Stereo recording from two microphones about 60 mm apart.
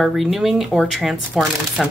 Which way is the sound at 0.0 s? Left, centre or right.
Centre.